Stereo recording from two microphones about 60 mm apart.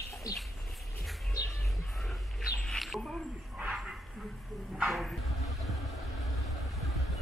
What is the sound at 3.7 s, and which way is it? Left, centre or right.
Bow-wow, centre.